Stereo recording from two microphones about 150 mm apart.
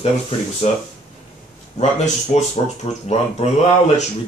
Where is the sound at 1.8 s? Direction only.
50° left (ahead or behind).